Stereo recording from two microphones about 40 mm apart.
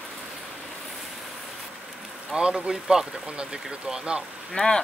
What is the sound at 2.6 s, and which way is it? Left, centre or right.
Speech, centre.